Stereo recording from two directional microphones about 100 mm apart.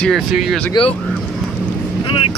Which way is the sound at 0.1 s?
Centre (ahead or behind).